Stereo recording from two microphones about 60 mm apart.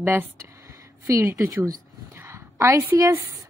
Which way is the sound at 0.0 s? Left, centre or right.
Right.